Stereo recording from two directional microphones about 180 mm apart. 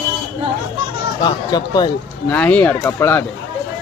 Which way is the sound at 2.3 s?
10° left (ahead or behind).